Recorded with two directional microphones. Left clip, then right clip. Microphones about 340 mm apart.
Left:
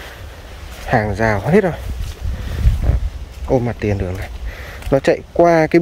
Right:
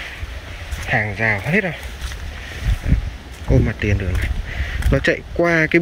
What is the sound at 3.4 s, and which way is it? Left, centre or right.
Speech, centre.